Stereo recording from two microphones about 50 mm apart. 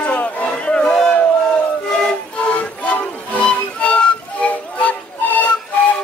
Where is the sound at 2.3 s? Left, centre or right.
Left.